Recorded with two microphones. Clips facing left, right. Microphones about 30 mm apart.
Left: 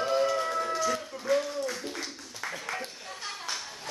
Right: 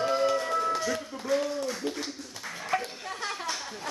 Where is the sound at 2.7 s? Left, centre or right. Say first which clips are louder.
Right 7 dB; right.